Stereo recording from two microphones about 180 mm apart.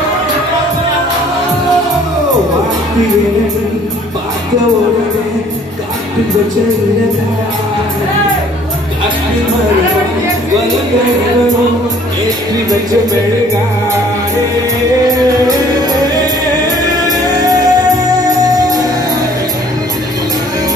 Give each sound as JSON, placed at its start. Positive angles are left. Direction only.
{"t": 15.0, "sound": "music", "side_deg": -20}